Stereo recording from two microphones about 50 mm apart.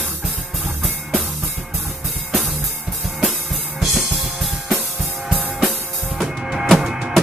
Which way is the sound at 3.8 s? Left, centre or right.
Centre.